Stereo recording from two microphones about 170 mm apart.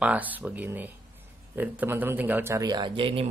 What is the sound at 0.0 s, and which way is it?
Speech, 10° right (ahead or behind).